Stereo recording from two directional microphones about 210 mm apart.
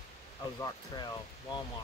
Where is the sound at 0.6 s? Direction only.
20° left (ahead or behind).